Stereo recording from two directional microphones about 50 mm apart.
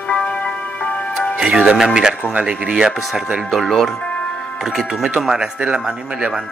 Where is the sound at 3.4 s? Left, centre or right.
Centre.